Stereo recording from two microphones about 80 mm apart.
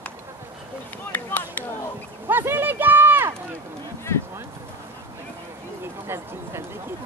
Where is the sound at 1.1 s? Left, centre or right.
Left.